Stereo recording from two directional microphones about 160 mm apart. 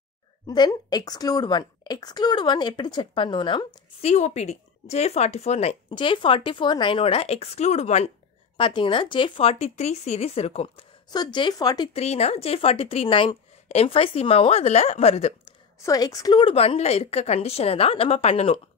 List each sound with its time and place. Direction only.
0.5 s a woman's voice: 25° left (ahead or behind)
4.1 s speech: 45° left (ahead or behind)
8.5 s speech: 30° left (ahead or behind)
11.1 s a woman's voice: 25° left (ahead or behind)
11.9 s speech: 40° left (ahead or behind)
15.8 s speech: 20° left (ahead or behind); by 18.6 s 40° left (ahead or behind)